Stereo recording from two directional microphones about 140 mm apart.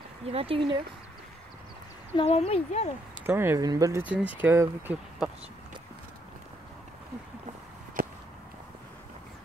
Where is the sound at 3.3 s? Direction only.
15° right (ahead or behind).